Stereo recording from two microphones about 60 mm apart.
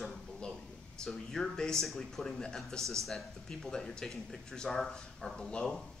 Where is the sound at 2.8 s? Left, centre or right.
Right.